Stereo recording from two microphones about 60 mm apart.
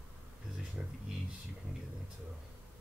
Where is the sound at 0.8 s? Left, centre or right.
Right.